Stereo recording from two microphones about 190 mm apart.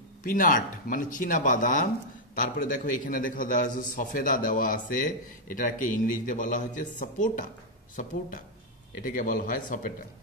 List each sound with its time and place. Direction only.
0.2 s a man's voice: 45° left (ahead or behind)